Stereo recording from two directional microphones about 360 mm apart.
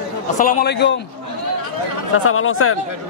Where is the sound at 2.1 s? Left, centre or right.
Left.